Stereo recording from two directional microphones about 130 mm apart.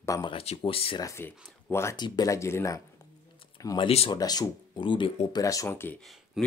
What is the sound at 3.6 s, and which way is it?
Speech, 35° left (ahead or behind).